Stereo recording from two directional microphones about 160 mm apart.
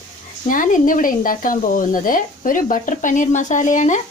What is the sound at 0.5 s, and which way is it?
Speech, 55° left (ahead or behind).